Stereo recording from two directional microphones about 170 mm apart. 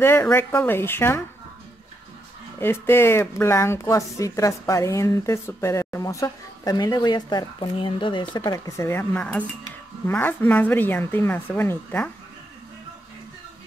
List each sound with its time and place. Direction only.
0.0 s speech: 15° left (ahead or behind)
2.6 s speech: 15° left (ahead or behind)